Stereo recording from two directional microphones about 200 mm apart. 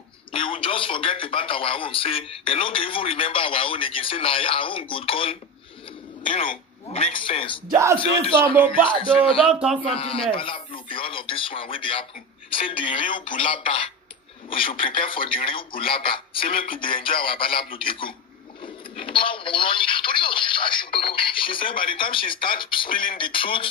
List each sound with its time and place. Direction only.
0.3 s speech: 25° left (ahead or behind)
9.5 s a man's voice: 5° right (ahead or behind)
9.8 s speech: 30° left (ahead or behind)